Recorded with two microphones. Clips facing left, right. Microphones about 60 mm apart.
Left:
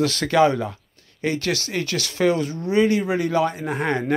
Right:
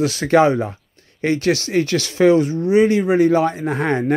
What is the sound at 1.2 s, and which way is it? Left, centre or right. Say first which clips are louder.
Speech: right 6 dB; right.